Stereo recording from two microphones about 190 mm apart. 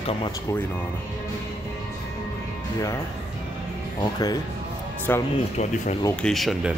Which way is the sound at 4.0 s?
20° left (ahead or behind).